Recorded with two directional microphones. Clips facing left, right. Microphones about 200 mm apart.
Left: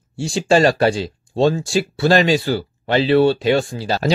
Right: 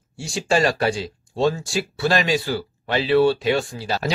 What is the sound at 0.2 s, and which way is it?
Speech, 30° left (ahead or behind).